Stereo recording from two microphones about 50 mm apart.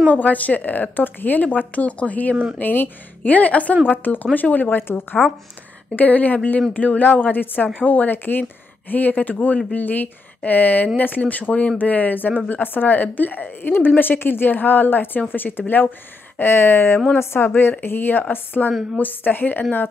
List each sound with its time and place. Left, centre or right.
0.1 s speech: left
5.9 s speech: left
16.3 s a woman's voice: left